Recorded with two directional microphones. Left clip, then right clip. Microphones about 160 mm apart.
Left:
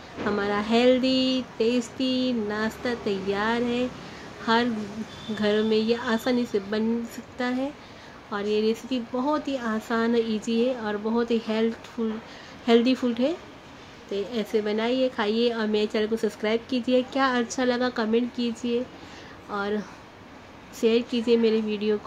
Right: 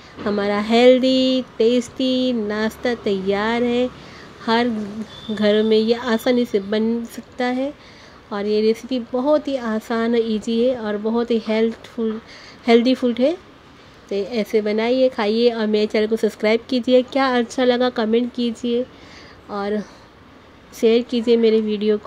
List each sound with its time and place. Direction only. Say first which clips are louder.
0.2 s speech: right 5 dB; 35° right (ahead or behind)